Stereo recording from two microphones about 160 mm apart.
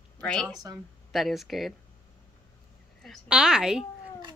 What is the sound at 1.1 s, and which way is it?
Speech, centre (ahead or behind).